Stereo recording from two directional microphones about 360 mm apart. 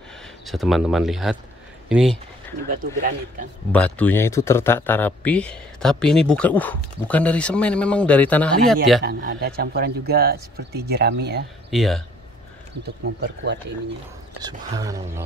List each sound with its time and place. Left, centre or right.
0.5 s speech: centre
2.7 s speech: right
3.7 s speech: centre
9.0 s speech: right
11.7 s speech: centre
13.2 s speech: right
14.4 s speech: centre